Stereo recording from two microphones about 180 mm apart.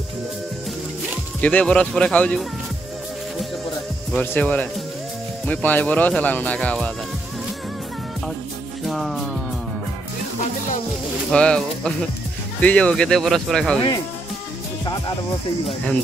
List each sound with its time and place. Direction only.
1.4 s speech: 5° left (ahead or behind)
4.1 s speech: 10° left (ahead or behind)
8.8 s music: centre (ahead or behind)
11.3 s speech: 5° left (ahead or behind)
13.7 s speech: 25° left (ahead or behind)